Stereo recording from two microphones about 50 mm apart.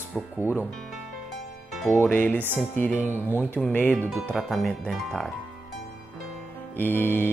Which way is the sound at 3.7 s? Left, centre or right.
Left.